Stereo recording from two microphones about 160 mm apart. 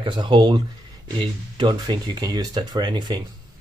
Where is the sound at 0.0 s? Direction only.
30° right (ahead or behind).